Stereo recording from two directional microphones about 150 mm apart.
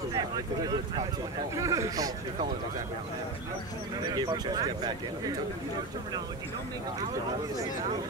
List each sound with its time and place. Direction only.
1.6 s speech: 20° right (ahead or behind)
4.0 s speech: 25° right (ahead or behind)